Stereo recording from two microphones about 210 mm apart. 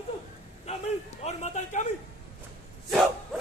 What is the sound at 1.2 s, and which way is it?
Speech, 35° left (ahead or behind).